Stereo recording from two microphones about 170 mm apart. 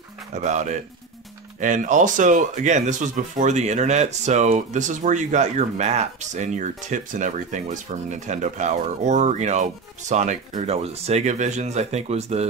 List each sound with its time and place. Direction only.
0.3 s speech: 45° right (ahead or behind)